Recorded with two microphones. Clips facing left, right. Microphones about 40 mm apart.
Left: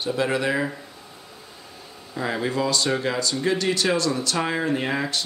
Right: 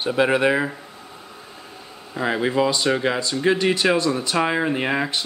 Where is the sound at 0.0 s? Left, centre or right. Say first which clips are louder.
Right 5 dB; right.